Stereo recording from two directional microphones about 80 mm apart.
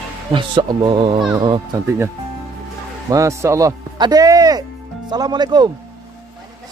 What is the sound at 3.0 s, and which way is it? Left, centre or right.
Speech, right.